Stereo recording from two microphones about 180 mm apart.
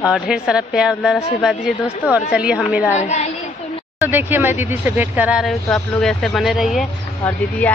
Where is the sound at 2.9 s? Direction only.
40° left (ahead or behind).